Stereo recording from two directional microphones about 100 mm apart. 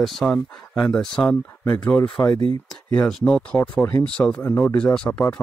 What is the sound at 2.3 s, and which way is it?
Speech, 70° right (ahead or behind).